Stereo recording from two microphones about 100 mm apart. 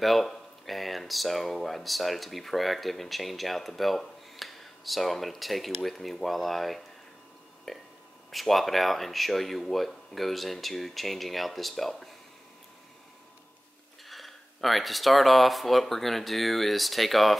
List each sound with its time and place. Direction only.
0.0 s speech: centre (ahead or behind)
14.0 s speech: centre (ahead or behind)